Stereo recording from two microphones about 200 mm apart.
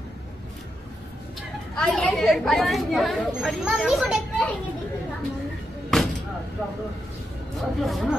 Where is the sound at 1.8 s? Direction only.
5° left (ahead or behind).